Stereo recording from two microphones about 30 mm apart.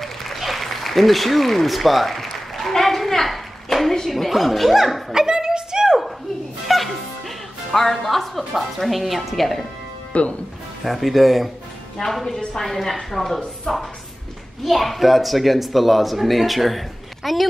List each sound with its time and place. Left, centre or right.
0.4 s speech: centre
2.0 s a sound: centre
4.1 s speech: centre
5.1 s a sound: right
6.7 s speech: centre
10.1 s speech: left
10.8 s speech: centre
12.0 s a woman's voice: centre
14.6 s speech: centre